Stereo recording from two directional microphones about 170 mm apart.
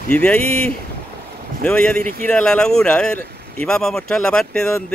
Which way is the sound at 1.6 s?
5° left (ahead or behind).